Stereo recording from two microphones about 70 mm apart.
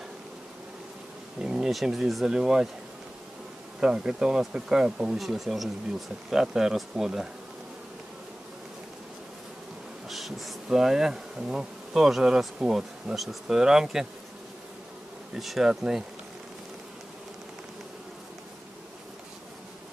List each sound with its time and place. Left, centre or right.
1.4 s bee: centre
3.8 s bee: centre
10.0 s bee: centre
15.3 s bee: centre